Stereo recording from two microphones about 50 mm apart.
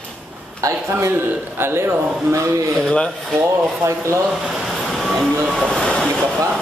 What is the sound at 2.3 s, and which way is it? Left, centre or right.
Speech, right.